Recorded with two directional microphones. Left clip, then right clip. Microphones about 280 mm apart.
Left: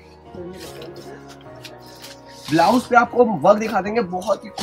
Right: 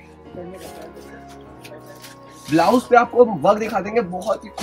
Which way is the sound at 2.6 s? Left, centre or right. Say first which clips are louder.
Even; centre.